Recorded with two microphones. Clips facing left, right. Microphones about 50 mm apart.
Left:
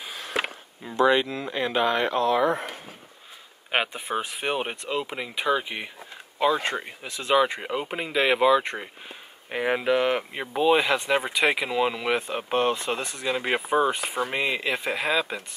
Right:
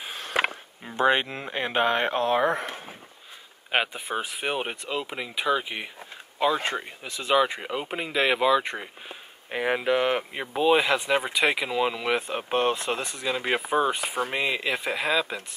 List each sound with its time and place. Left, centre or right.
0.0 s chop: right
0.9 s speech: right
3.7 s speech: centre
6.7 s speech: centre
7.2 s speech: centre